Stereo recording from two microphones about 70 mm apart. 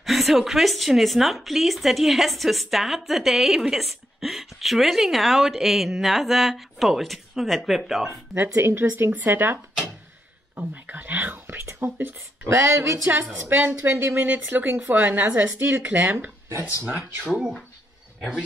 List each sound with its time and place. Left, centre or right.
0.0 s a woman's voice: centre
8.4 s speech: right
10.7 s speech: right
16.9 s speech: centre